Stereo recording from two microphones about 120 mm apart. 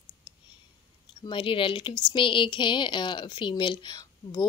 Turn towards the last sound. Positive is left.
turn(degrees=40)  # may be behind; listen again after turning